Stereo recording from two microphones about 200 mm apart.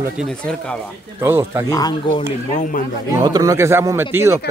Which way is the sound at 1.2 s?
10° right (ahead or behind).